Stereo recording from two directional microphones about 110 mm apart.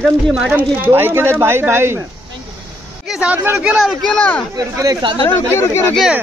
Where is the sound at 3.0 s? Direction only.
10° right (ahead or behind).